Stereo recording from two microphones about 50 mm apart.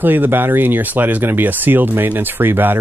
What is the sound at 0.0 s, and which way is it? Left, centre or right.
Speech, right.